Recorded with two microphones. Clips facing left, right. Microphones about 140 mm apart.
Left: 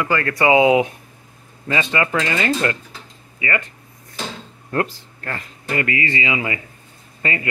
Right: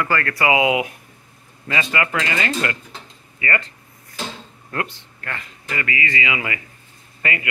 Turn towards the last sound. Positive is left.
turn(degrees=30)  # may be behind; listen again after turning